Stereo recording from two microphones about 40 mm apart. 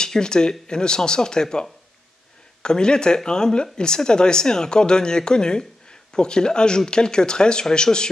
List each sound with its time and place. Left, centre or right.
0.0 s speech: centre